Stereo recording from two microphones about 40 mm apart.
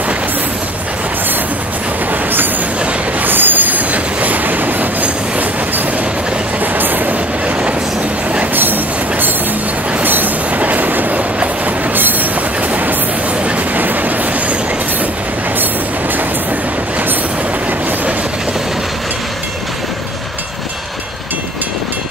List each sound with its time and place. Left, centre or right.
3.2 s train: right
6.6 s train: right
10.0 s train: right
13.7 s train: right